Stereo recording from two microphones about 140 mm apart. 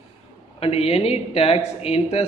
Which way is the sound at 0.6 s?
45° left (ahead or behind).